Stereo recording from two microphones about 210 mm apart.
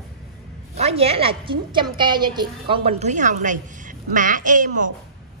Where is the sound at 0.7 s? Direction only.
30° right (ahead or behind).